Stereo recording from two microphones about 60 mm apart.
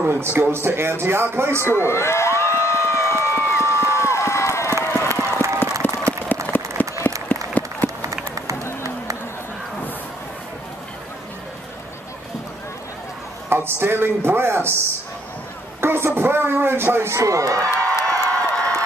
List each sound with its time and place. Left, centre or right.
0.0 s speech: right
1.8 s crowd: left
5.1 s run: right
6.3 s a sound: left
6.8 s applause: left
7.8 s run: right
13.5 s chopping: right
15.8 s a sound: right
16.2 s speech: right
17.1 s speech: right
17.8 s crowd: centre